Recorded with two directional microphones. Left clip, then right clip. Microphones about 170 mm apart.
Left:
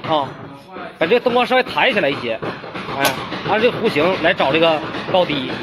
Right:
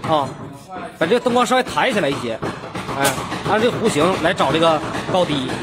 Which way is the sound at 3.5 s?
20° right (ahead or behind).